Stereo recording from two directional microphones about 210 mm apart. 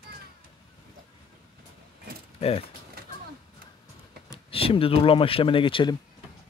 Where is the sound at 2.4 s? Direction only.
30° left (ahead or behind).